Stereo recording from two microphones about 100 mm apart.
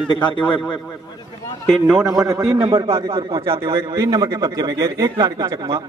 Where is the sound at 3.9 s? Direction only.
40° right (ahead or behind).